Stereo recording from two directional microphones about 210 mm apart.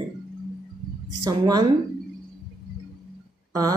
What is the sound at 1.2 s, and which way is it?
Speech, 20° right (ahead or behind).